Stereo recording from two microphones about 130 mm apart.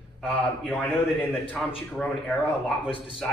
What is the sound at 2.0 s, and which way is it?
Speech, 5° left (ahead or behind).